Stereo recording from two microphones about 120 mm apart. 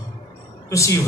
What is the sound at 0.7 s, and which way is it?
Music, 25° left (ahead or behind).